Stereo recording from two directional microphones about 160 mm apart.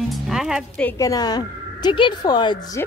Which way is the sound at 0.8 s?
20° left (ahead or behind).